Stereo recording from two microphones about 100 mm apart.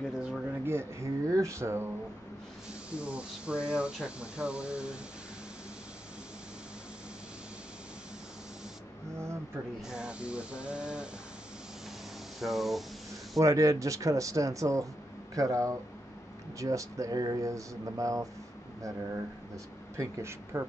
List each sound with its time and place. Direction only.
0.1 s speech: 5° right (ahead or behind)
0.7 s speech: 25° right (ahead or behind)
2.9 s speech: 10° right (ahead or behind)
9.8 s speech: 5° right (ahead or behind)
12.4 s speech: 5° right (ahead or behind)
13.4 s speech: 30° right (ahead or behind)